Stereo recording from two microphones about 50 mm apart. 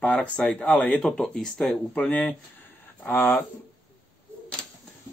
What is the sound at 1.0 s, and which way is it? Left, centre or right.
Speech, centre.